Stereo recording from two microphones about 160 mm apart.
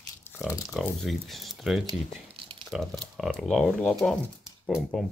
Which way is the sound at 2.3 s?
35° right (ahead or behind).